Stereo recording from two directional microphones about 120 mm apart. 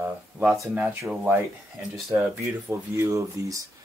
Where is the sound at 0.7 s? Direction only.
10° right (ahead or behind).